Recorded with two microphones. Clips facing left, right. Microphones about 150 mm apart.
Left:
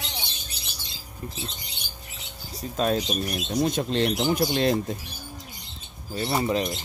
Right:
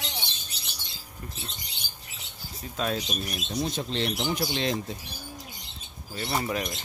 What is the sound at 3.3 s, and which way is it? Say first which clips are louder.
Speech: left 6 dB; 55° left (ahead or behind).